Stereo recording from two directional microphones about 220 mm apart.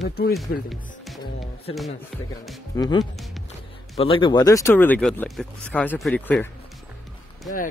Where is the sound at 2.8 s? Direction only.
20° left (ahead or behind).